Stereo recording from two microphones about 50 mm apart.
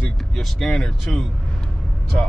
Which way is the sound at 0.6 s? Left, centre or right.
Centre.